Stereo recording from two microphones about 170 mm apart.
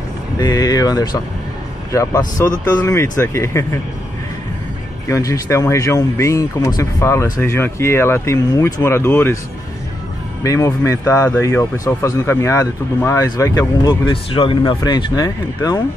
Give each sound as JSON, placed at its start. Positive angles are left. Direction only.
{"t": 0.4, "sound": "speech", "side_deg": 20}
{"t": 5.0, "sound": "speech", "side_deg": 20}
{"t": 10.4, "sound": "speech", "side_deg": 20}